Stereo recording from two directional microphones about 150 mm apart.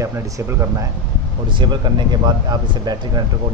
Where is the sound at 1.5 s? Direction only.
30° right (ahead or behind).